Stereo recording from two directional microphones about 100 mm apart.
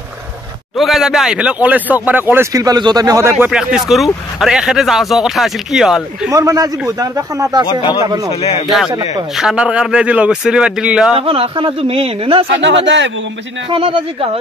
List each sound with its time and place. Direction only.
0.7 s speech: centre (ahead or behind); by 2.4 s 20° right (ahead or behind)
2.5 s speech: 35° right (ahead or behind)
3.4 s speech: 5° right (ahead or behind)
6.3 s speech: 35° right (ahead or behind)
7.6 s speech: 50° left (ahead or behind)
8.3 s speech: 90° left
8.6 s speech: centre (ahead or behind)
11.1 s speech: 65° right (ahead or behind)
13.7 s speech: 60° right (ahead or behind)